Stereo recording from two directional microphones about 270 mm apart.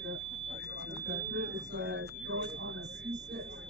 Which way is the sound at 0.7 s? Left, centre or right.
Right.